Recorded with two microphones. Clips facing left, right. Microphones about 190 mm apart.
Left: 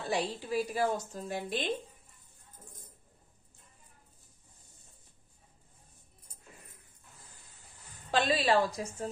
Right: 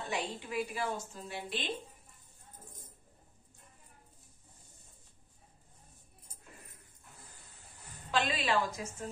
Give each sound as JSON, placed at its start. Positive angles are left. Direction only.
{"t": 0.0, "sound": "speech", "side_deg": 35}
{"t": 8.1, "sound": "speech", "side_deg": 35}